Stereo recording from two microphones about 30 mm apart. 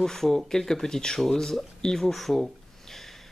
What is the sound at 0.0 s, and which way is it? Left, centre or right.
Speech, centre.